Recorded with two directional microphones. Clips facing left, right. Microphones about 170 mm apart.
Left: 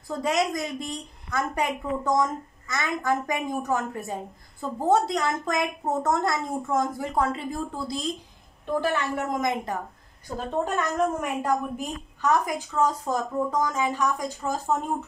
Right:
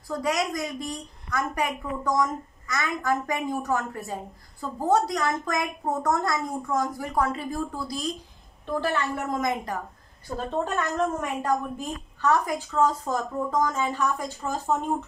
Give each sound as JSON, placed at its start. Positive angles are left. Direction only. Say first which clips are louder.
{"t": 0.1, "sound": "a woman's voice", "louder": "left 1 dB", "side_deg": 20}